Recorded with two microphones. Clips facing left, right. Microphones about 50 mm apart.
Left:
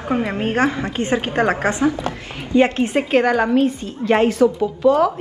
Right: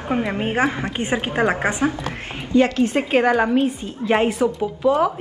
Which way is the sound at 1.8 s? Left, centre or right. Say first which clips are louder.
Left 3 dB; right.